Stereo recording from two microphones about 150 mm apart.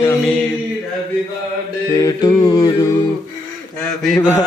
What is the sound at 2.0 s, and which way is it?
Music, 25° left (ahead or behind).